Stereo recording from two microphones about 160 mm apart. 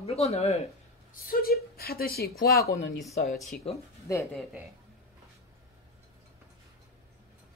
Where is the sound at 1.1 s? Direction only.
65° left (ahead or behind).